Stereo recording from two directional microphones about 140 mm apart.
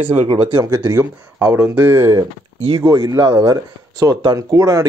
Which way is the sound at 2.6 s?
35° right (ahead or behind).